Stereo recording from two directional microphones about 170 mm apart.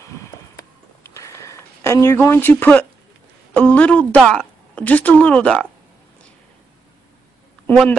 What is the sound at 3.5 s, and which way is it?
A woman's voice, 5° left (ahead or behind).